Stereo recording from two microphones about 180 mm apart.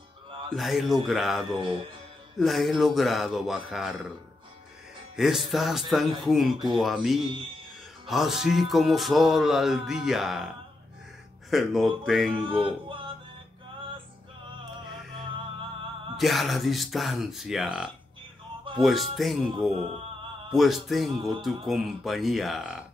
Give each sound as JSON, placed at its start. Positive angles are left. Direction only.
{"t": 0.6, "sound": "music", "side_deg": 0}
{"t": 1.6, "sound": "speech", "side_deg": -25}
{"t": 2.3, "sound": "music", "side_deg": 0}
{"t": 5.1, "sound": "music", "side_deg": 0}
{"t": 11.5, "sound": "music", "side_deg": 0}
{"t": 12.3, "sound": "speech", "side_deg": -25}
{"t": 12.6, "sound": "music", "side_deg": -30}
{"t": 16.2, "sound": "music", "side_deg": 0}